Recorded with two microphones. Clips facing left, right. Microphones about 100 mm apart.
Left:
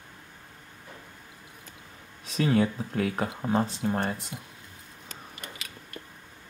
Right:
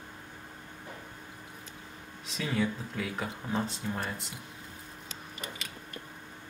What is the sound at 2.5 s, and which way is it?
Speech, 50° left (ahead or behind).